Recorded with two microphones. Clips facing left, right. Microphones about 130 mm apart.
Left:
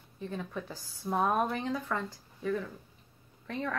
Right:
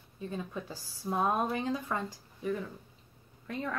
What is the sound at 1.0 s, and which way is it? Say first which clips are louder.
Speech: left 1 dB; 15° right (ahead or behind).